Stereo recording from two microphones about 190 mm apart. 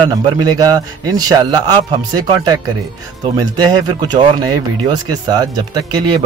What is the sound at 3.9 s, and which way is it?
Speech, 20° right (ahead or behind).